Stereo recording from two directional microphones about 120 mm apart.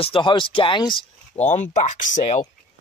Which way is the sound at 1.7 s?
90° left.